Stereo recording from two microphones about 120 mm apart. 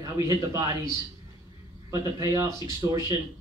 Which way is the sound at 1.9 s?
25° right (ahead or behind).